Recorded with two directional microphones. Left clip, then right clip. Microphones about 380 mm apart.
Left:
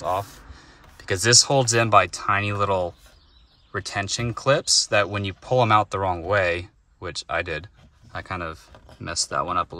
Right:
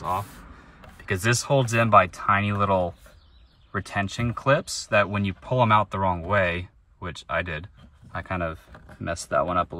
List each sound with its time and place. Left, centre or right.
1.0 s speech: centre